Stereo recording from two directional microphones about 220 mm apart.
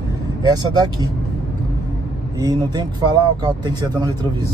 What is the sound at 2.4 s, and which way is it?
Speech, 15° right (ahead or behind).